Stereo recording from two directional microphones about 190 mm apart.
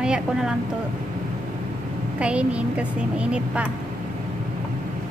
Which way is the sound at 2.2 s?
5° right (ahead or behind).